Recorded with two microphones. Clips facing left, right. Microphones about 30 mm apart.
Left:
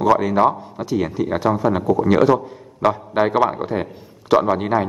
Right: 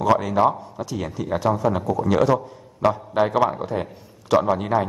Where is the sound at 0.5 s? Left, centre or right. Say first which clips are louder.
Left 3 dB; left.